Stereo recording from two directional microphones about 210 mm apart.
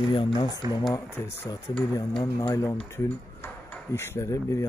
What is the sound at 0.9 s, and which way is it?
Speech, 15° left (ahead or behind).